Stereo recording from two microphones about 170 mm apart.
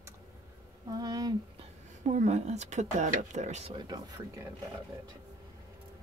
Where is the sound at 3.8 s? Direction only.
25° right (ahead or behind).